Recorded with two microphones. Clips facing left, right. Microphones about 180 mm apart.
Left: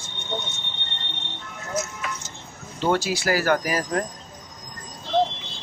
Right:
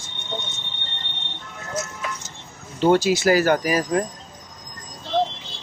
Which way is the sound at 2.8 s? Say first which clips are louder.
Right 6 dB; 15° right (ahead or behind).